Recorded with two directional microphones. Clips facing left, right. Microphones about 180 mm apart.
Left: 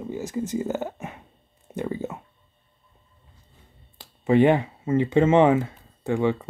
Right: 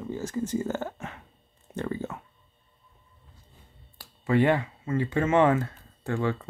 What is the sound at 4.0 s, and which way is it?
Speech, 20° left (ahead or behind).